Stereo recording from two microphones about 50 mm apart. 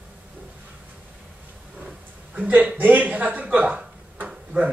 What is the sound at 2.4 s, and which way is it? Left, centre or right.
A man's voice, right.